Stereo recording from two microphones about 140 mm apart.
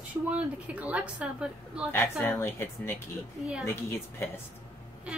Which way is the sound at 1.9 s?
15° left (ahead or behind).